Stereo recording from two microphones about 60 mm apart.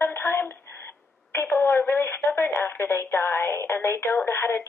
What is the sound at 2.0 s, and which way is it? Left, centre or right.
Radio, left.